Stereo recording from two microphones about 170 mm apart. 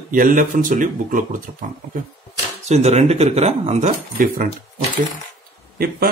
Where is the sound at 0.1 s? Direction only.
50° right (ahead or behind).